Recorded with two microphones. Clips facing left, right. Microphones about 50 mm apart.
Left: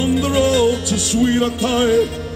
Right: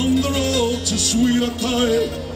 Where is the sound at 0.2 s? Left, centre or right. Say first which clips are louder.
Left 5 dB; left.